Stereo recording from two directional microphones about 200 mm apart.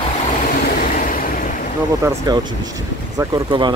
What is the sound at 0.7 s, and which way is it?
Vehicle, 45° left (ahead or behind).